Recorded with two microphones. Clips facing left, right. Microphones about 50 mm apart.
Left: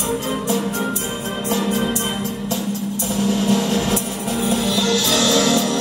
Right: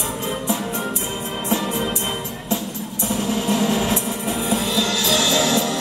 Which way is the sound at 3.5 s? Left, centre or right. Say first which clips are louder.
Left 1 dB; right.